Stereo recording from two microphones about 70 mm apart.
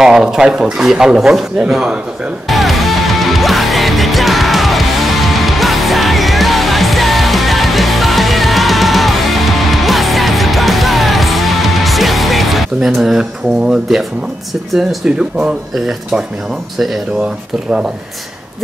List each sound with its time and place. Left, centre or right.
0.0 s speech: centre
2.5 s music: centre
13.7 s speech: centre
15.0 s speech: centre
17.2 s speech: centre